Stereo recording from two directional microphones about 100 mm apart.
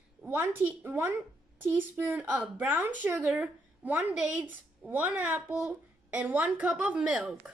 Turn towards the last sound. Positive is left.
turn(degrees=-15)  # may be behind; listen again after turning